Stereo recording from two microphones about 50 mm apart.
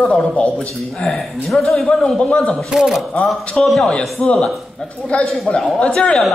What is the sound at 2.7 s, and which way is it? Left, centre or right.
A man's voice, centre.